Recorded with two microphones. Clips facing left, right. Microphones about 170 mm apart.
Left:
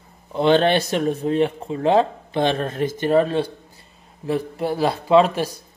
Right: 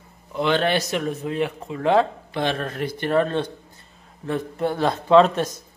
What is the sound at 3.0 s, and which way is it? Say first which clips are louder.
A man's voice: left 3 dB; 15° left (ahead or behind).